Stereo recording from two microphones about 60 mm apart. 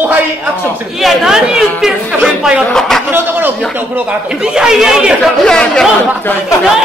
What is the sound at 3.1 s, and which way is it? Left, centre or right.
A man's voice, right.